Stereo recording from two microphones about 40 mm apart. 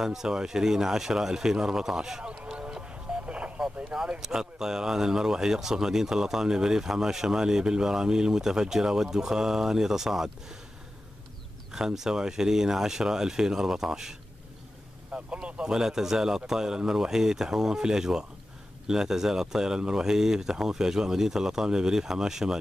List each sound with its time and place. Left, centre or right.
0.0 s speech: centre
2.5 s music: right
3.6 s speech: centre
11.7 s speech: centre
15.1 s speech: right
15.6 s speech: centre